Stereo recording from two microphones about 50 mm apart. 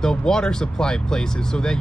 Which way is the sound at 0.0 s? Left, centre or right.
Centre.